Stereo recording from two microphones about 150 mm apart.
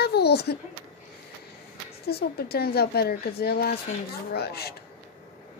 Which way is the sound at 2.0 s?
90° left.